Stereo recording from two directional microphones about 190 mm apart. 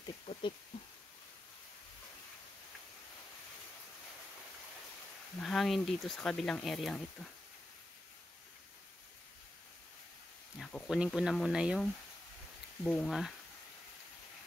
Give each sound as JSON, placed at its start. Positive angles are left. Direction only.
{"t": 0.0, "sound": "a sound", "side_deg": 25}
{"t": 5.4, "sound": "speech", "side_deg": 0}
{"t": 10.6, "sound": "speech", "side_deg": 0}